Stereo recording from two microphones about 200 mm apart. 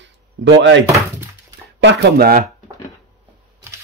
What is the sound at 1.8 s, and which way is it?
Speech, 50° right (ahead or behind).